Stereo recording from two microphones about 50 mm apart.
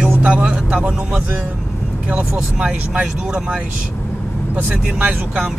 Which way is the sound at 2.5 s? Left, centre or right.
Right.